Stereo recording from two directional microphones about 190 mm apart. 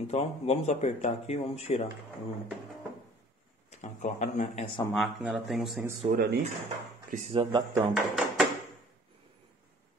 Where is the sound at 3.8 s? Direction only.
40° left (ahead or behind).